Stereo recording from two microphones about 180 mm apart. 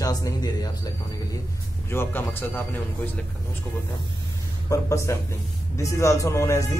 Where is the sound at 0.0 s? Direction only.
20° left (ahead or behind).